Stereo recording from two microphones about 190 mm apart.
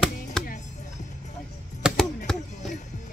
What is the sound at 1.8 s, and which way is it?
Chop, centre (ahead or behind).